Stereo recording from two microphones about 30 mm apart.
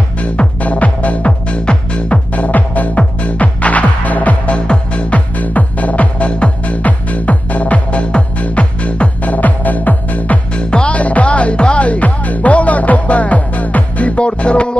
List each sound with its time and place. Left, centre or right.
0.2 s music: left
1.6 s music: left
2.3 s music: left
3.0 s music: left
4.6 s music: left
5.1 s music: left
9.2 s music: left
10.5 s music: left
10.9 s music: left